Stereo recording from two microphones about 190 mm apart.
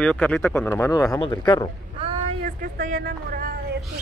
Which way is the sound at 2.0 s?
30° right (ahead or behind).